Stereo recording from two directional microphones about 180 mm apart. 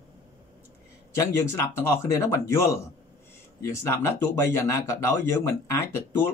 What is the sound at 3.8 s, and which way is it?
Speech, 15° left (ahead or behind).